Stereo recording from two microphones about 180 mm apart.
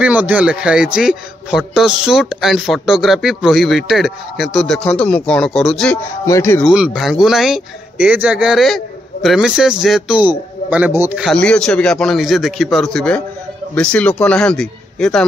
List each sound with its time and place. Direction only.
0.0 s a man's voice: 10° right (ahead or behind)
6.2 s speech: 15° left (ahead or behind)
6.6 s a man's voice: 5° right (ahead or behind)